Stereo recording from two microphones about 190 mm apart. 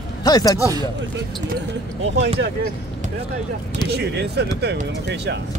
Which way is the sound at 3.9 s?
60° right (ahead or behind).